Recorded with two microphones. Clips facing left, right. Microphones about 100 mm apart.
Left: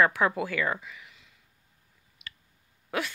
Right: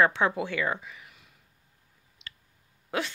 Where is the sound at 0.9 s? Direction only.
35° right (ahead or behind).